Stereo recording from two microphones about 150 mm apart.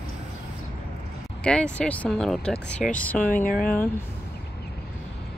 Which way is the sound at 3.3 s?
65° left (ahead or behind).